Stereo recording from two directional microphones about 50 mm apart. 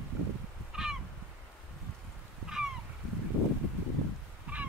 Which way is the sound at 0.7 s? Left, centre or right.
Centre.